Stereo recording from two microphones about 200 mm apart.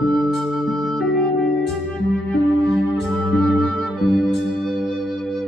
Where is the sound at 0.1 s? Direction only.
Centre (ahead or behind).